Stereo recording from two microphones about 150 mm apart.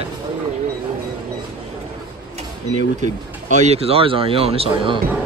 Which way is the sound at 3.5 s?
45° right (ahead or behind).